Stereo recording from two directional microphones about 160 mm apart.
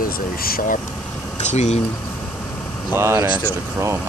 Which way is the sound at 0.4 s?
70° left (ahead or behind).